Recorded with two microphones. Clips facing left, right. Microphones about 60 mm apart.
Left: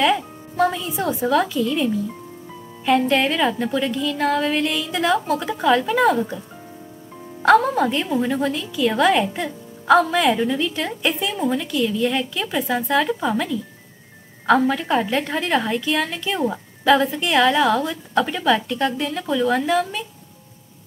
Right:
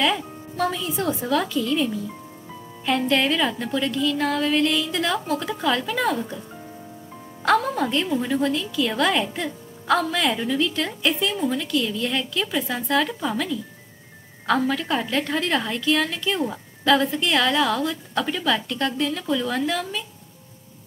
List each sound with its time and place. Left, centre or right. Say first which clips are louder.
0.0 s a woman's voice: left 4 dB; centre
0.6 s a woman's voice: left 4 dB; centre
7.4 s a woman's voice: left 5 dB; centre